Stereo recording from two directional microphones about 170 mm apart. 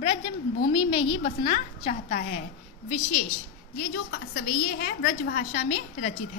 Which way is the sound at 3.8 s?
55° left (ahead or behind).